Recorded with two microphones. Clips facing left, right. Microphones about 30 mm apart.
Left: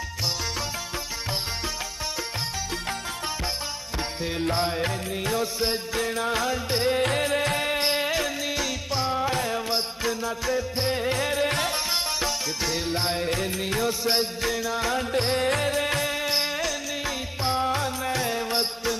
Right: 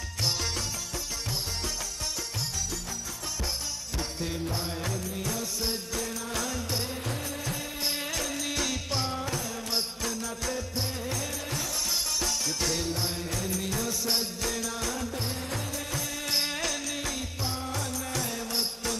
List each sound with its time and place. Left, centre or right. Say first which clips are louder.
4.4 s music: left 8 dB; left
7.0 s music: left 12 dB; left
7.9 s music: left 8 dB; left
8.5 s music: left 3 dB; centre
9.3 s music: left 8 dB; left
9.7 s music: left 5 dB; left
10.8 s music: left 8 dB; left
12.3 s music: left 2 dB; left
12.9 s music: left 7 dB; left
15.1 s music: left 11 dB; left
16.3 s music: left 4 dB; centre
17.4 s music: left 12 dB; left